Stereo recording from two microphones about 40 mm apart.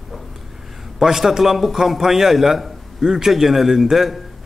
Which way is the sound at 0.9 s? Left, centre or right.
Centre.